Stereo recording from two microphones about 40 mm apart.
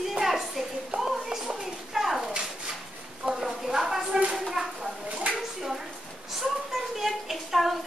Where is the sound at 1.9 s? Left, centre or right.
Centre.